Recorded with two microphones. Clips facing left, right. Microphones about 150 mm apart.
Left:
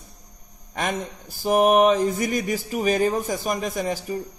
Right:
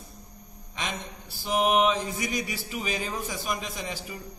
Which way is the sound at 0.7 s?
50° left (ahead or behind).